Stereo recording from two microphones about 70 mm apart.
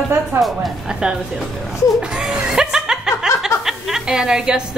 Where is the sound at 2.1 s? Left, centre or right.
Centre.